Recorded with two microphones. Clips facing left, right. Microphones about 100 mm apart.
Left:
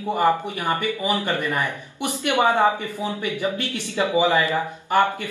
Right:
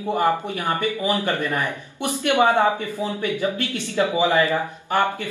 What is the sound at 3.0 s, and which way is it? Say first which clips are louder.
Speech: right 2 dB; 15° left (ahead or behind).